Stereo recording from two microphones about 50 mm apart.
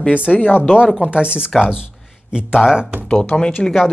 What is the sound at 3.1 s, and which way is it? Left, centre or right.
Speech, left.